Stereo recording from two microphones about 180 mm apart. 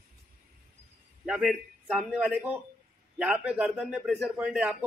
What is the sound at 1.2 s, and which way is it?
A man's voice, 5° right (ahead or behind).